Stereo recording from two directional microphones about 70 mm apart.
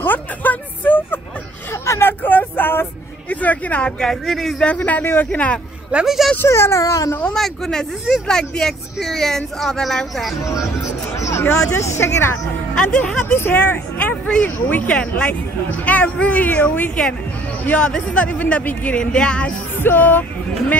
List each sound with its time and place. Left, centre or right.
0.0 s music: left
1.7 s vehicle: left
4.0 s speech: centre
4.6 s speech: centre
6.0 s speech: centre
6.3 s speech: left
6.8 s speech: left
7.3 s speech: centre
10.4 s speech: left
12.7 s speech: centre
13.2 s speech: left; by 19.5 s centre
19.7 s music: left